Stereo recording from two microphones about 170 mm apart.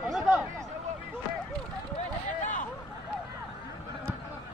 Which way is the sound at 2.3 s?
45° left (ahead or behind).